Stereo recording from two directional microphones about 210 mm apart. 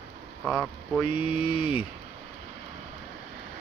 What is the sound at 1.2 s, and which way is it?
Speech, 25° left (ahead or behind).